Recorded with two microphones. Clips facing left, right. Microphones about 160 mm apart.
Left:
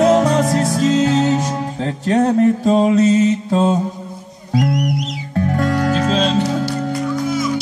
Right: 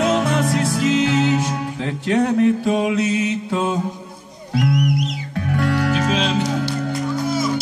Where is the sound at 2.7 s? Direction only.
35° left (ahead or behind).